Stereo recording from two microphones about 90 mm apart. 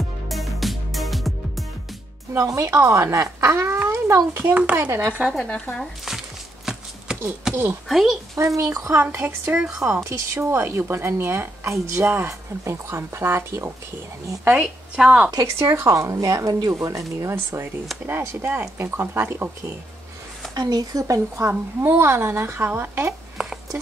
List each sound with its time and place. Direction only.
0.3 s music: centre (ahead or behind)
2.3 s speech: 35° right (ahead or behind)
5.3 s speech: 10° left (ahead or behind)
6.0 s a sound: 5° right (ahead or behind)
7.9 s speech: 5° right (ahead or behind)
8.4 s speech: 35° right (ahead or behind)
9.2 s speech: 20° right (ahead or behind)
10.0 s speech: 35° right (ahead or behind)
15.0 s speech: 10° right (ahead or behind)
15.4 s speech: 30° right (ahead or behind)
17.2 s speech: 30° right (ahead or behind)
20.5 s speech: 45° right (ahead or behind)
21.5 s speech: 25° right (ahead or behind)
23.3 s a sound: 5° right (ahead or behind)